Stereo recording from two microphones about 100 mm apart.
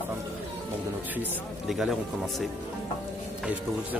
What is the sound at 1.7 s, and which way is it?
Speech, centre (ahead or behind).